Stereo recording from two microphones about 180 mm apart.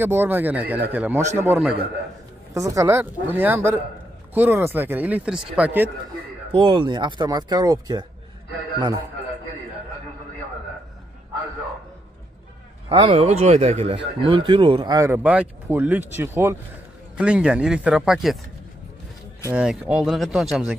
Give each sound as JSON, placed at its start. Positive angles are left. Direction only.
{"t": 0.0, "sound": "speech", "side_deg": -10}
{"t": 6.5, "sound": "speech", "side_deg": -25}
{"t": 12.9, "sound": "speech", "side_deg": -30}
{"t": 19.5, "sound": "speech", "side_deg": -5}